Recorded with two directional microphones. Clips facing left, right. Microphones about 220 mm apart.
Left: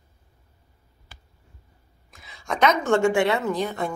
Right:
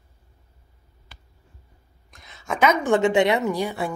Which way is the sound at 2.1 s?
Centre (ahead or behind).